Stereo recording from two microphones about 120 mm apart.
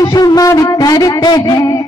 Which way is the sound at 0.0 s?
30° left (ahead or behind).